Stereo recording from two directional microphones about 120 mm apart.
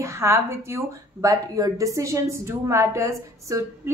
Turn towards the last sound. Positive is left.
turn(degrees=-25)  # may be behind; listen again after turning